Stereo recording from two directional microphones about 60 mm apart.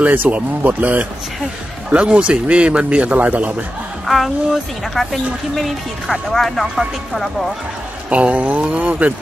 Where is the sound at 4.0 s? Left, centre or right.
Centre.